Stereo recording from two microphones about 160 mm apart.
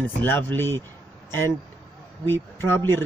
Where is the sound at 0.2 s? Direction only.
15° left (ahead or behind).